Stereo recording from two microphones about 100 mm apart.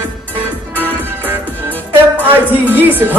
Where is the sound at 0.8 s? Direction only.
20° right (ahead or behind).